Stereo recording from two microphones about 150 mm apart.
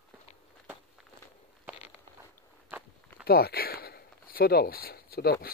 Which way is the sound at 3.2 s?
90° left.